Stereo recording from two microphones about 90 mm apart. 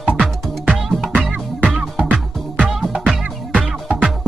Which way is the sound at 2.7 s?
5° right (ahead or behind).